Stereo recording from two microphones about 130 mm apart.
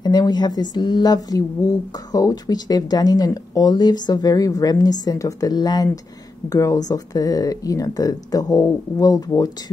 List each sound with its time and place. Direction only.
0.0 s a woman's voice: 35° left (ahead or behind)